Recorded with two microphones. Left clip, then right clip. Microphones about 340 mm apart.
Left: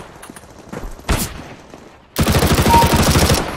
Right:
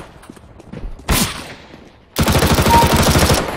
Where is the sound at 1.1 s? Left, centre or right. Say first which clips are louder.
Right 4 dB; centre.